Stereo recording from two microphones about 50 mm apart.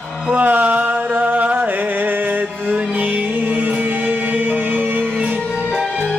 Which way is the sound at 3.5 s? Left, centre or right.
Right.